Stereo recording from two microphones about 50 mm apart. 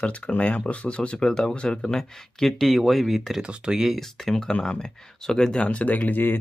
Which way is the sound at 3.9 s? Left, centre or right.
Centre.